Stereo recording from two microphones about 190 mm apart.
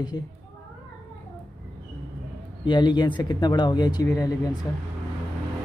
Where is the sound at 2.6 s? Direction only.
25° left (ahead or behind).